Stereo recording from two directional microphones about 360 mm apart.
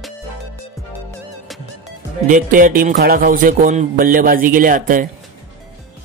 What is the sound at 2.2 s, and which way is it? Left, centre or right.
Music, right.